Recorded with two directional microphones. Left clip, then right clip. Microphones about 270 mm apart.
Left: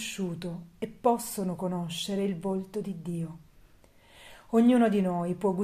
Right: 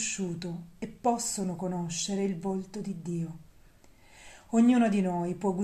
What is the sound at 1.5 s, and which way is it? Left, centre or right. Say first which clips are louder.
Speech: left 1 dB; left.